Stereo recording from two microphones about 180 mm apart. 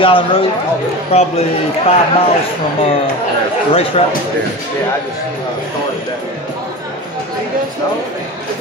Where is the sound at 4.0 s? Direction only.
35° left (ahead or behind).